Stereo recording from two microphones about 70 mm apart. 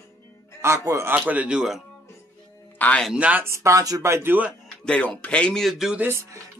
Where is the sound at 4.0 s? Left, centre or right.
Right.